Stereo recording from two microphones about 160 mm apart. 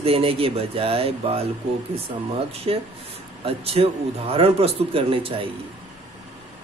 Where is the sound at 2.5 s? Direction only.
35° right (ahead or behind).